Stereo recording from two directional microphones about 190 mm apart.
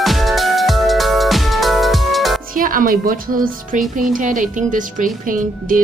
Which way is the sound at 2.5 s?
45° right (ahead or behind).